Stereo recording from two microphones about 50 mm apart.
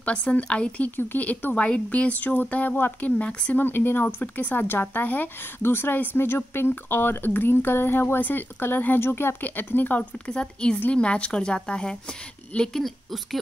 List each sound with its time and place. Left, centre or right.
0.0 s a woman's voice: left
0.8 s a woman's voice: left
3.5 s speech: left
4.2 s speech: left
5.6 s speech: left
9.4 s speech: left
10.2 s a woman's voice: centre